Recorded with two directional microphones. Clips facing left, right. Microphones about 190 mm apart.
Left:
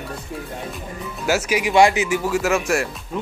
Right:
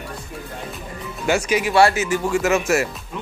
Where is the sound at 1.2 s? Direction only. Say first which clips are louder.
Right 1 dB; 5° left (ahead or behind).